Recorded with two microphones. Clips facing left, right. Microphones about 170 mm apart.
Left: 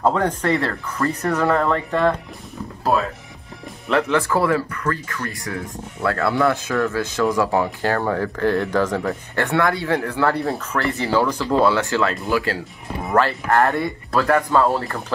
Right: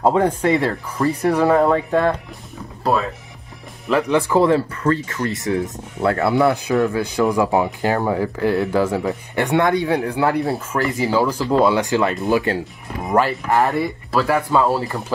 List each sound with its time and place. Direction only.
0.1 s speech: 10° right (ahead or behind)
2.8 s speech: centre (ahead or behind)
4.1 s speech: 20° right (ahead or behind)
10.4 s speech: centre (ahead or behind)
13.3 s speech: centre (ahead or behind)